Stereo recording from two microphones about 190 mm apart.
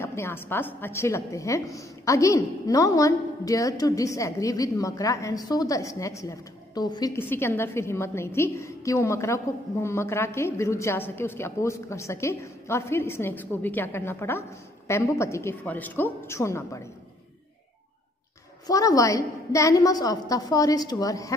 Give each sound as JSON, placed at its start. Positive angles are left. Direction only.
{"t": 0.0, "sound": "a woman's voice", "side_deg": 15}
{"t": 18.7, "sound": "a woman's voice", "side_deg": 20}